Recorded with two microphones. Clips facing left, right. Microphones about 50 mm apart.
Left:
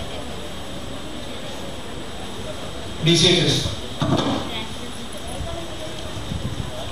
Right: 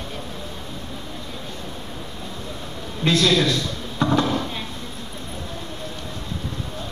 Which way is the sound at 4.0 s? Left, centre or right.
Right.